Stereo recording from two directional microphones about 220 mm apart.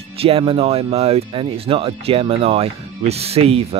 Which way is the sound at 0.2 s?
25° right (ahead or behind).